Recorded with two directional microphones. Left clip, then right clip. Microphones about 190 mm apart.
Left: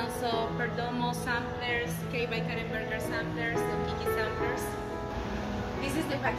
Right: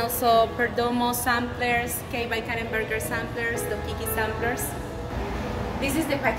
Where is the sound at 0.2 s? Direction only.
60° right (ahead or behind).